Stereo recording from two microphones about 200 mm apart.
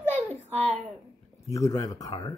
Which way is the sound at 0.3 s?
35° right (ahead or behind).